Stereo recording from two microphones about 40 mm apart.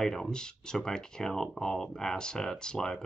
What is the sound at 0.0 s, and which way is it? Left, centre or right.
Speech, centre.